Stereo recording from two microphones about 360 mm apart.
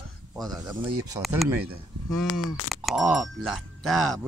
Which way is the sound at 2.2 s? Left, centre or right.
Left.